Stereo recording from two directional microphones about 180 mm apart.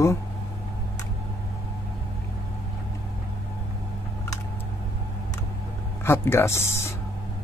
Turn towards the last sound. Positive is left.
turn(degrees=15)  # may be behind; listen again after turning